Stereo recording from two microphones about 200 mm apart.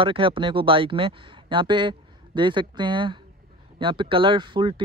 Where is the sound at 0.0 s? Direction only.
25° right (ahead or behind).